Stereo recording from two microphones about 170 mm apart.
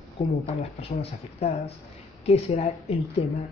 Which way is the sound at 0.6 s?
35° left (ahead or behind).